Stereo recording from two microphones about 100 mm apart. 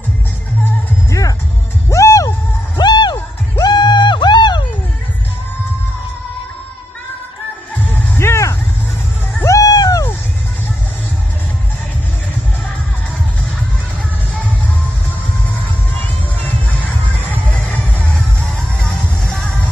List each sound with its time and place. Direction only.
1.9 s music: 35° left (ahead or behind)
2.8 s music: 50° left (ahead or behind)
8.2 s vehicle: 30° left (ahead or behind)
9.4 s a sound: 35° left (ahead or behind)
17.3 s music: 15° left (ahead or behind)